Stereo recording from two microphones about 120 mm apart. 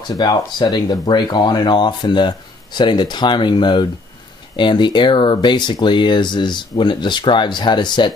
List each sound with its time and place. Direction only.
0.1 s speech: 35° left (ahead or behind)